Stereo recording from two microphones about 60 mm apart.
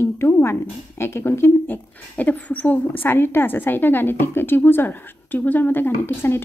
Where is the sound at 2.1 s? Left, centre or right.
Left.